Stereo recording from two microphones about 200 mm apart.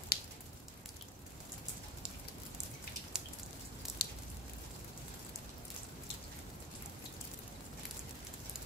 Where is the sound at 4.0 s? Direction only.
55° left (ahead or behind).